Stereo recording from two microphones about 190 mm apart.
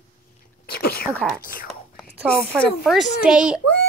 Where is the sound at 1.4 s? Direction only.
45° left (ahead or behind).